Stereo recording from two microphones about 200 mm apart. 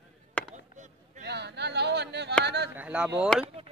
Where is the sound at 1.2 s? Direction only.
55° right (ahead or behind).